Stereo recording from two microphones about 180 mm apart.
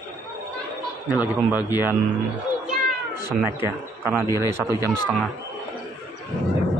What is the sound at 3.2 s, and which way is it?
Speech, 15° right (ahead or behind).